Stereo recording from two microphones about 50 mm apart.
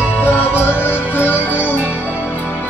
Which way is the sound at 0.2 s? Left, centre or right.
Left.